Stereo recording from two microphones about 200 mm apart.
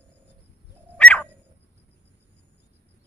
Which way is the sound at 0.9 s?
5° left (ahead or behind).